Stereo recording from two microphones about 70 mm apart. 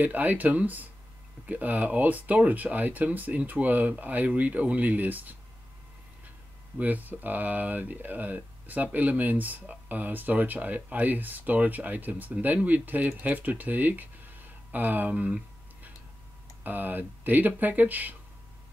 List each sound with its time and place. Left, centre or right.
0.0 s speech: right
6.8 s speech: right
14.7 s a sound: right
16.6 s speech: right